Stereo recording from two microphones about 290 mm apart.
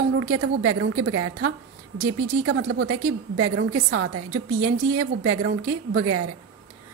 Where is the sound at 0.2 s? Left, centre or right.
Right.